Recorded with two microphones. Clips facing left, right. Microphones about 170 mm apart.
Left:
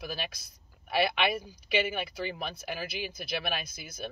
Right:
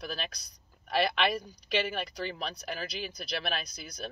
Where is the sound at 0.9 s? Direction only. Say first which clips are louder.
Even; 5° left (ahead or behind).